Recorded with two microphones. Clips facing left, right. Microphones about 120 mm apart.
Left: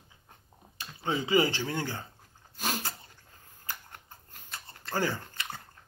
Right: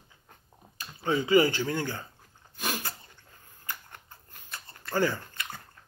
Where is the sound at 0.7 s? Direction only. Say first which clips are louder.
Right 3 dB; 25° left (ahead or behind).